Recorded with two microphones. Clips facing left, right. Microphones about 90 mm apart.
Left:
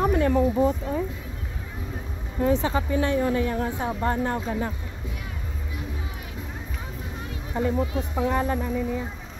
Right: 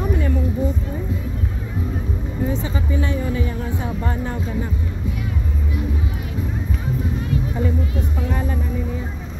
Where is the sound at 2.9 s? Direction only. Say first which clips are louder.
Even; 55° left (ahead or behind).